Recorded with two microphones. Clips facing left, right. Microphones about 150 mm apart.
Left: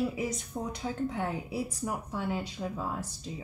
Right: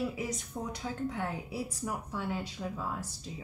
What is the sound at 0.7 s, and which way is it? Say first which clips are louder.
A woman's voice: left 3 dB; 20° left (ahead or behind).